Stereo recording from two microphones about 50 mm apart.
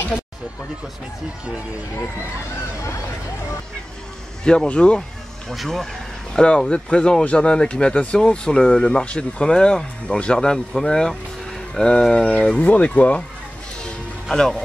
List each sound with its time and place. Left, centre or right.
4.6 s speech: left
5.5 s speech: centre
6.3 s speech: centre
14.3 s speech: centre